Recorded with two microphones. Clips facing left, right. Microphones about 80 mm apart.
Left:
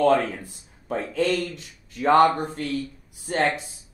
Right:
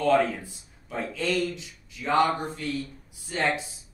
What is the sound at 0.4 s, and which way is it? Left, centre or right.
Speech, left.